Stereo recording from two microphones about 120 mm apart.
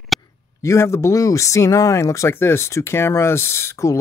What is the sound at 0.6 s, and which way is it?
Speech, 25° left (ahead or behind).